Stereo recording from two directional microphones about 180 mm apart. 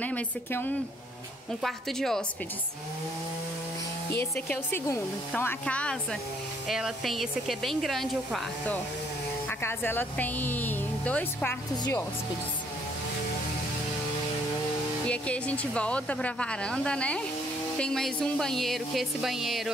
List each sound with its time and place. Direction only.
0.0 s speech: 10° left (ahead or behind)
4.1 s speech: 10° left (ahead or behind)
9.5 s a woman's voice: 10° left (ahead or behind)
11.7 s speech: 20° left (ahead or behind)
15.0 s speech: 5° left (ahead or behind)